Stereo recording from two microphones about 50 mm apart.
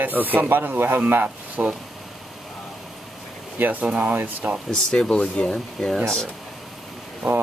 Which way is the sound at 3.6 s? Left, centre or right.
Right.